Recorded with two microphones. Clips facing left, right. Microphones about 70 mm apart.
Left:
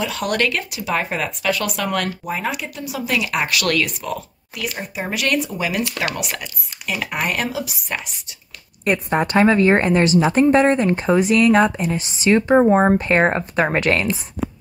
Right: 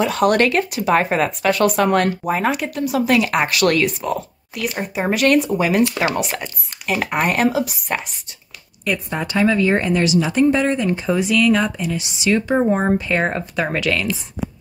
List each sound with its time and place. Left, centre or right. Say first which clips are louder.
0.0 s speech: right 5 dB; right
4.8 s speech: right 7 dB; right
8.8 s a woman's voice: left 4 dB; left